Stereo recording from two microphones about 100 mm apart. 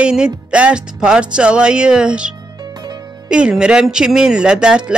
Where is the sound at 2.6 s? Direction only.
45° right (ahead or behind).